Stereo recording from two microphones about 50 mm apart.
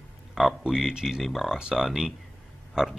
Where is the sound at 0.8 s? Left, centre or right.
Centre.